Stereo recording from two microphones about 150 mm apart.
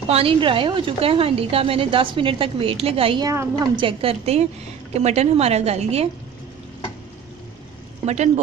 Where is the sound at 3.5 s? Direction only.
30° right (ahead or behind).